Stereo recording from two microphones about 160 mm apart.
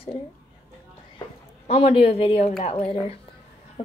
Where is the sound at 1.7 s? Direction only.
35° left (ahead or behind).